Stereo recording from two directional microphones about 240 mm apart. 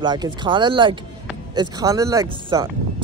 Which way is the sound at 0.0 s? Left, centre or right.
Centre.